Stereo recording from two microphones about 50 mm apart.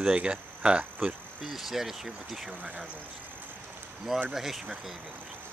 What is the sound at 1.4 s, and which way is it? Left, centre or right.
Speech, centre.